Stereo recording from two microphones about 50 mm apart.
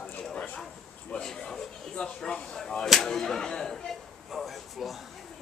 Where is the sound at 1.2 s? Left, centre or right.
Centre.